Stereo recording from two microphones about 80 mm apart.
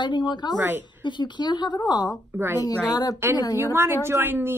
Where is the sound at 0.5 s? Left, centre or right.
Right.